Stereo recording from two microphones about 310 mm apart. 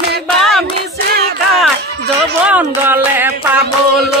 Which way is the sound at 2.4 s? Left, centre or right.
Centre.